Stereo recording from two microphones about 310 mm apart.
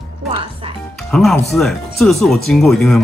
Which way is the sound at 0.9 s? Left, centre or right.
Centre.